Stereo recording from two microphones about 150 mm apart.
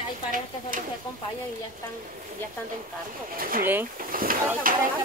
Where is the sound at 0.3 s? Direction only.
65° right (ahead or behind).